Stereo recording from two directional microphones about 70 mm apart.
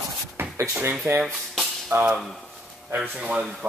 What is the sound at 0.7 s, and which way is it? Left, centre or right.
Speech, right.